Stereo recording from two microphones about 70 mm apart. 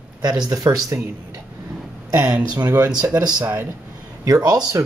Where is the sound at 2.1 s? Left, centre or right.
Centre.